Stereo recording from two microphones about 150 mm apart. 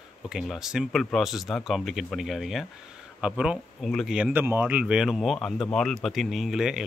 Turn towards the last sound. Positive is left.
turn(degrees=-5)  # may be behind; listen again after turning